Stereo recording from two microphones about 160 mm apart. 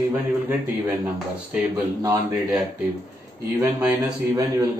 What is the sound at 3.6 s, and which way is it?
Speech, 10° right (ahead or behind).